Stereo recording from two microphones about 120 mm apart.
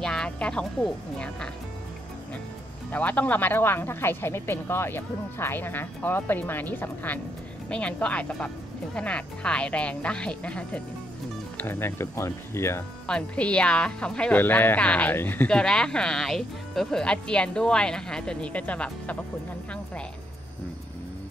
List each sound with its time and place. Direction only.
0.0 s speech: 5° left (ahead or behind)
2.9 s speech: 15° left (ahead or behind)
13.0 s speech: 10° left (ahead or behind)